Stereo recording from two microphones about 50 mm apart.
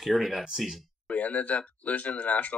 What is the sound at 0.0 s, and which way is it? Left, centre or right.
Speech, centre.